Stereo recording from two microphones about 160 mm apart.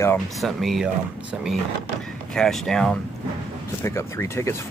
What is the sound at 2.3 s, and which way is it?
Speech, 5° left (ahead or behind).